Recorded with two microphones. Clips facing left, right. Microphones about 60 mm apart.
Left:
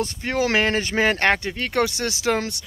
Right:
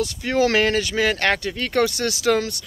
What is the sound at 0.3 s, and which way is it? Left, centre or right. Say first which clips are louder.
Speech: right 2 dB; centre.